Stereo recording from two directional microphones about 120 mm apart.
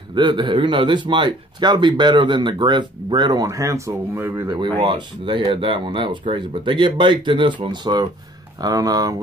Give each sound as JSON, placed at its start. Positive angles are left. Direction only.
{"t": 0.1, "sound": "a man's voice", "side_deg": -40}
{"t": 3.4, "sound": "speech", "side_deg": -25}
{"t": 4.8, "sound": "a man's voice", "side_deg": -45}